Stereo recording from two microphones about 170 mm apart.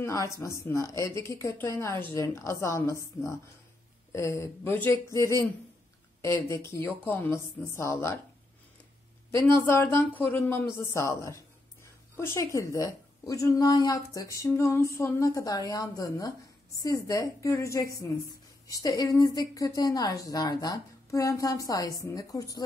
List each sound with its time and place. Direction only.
0.0 s a woman's voice: 20° left (ahead or behind)
9.3 s a woman's voice: 15° left (ahead or behind)